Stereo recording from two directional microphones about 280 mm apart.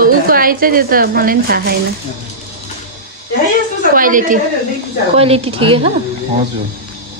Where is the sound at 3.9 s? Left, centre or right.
Right.